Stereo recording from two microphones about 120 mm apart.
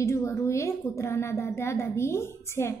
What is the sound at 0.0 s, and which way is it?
A woman's voice, 25° left (ahead or behind).